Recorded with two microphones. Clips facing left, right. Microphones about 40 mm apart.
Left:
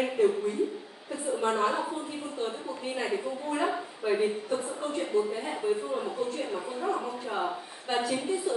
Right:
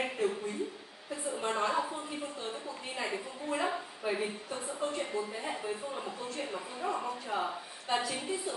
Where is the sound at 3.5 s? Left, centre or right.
Centre.